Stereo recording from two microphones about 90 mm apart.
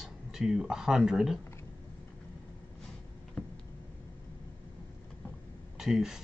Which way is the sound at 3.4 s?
15° left (ahead or behind).